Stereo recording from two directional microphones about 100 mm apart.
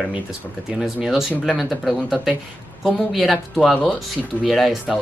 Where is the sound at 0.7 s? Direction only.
5° right (ahead or behind).